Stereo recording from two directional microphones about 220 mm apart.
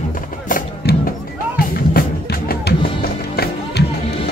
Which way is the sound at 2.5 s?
45° left (ahead or behind).